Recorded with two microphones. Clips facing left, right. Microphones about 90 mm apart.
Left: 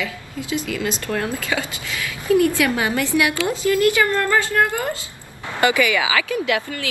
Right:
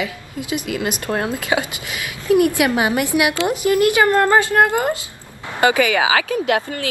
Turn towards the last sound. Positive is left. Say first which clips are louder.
# right 3 dB
turn(degrees=-35)  # may be behind; listen again after turning